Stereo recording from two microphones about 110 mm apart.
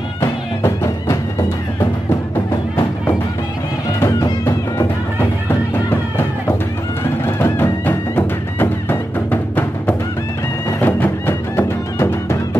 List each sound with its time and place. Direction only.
0.6 s music: 25° left (ahead or behind)
4.0 s music: 30° left (ahead or behind)
5.5 s music: 20° left (ahead or behind)